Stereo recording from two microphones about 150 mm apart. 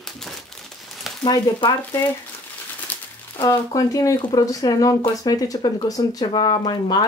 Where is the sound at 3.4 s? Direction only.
25° left (ahead or behind).